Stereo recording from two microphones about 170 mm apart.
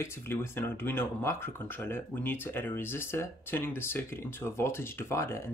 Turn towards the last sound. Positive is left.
turn(degrees=15)  # may be behind; listen again after turning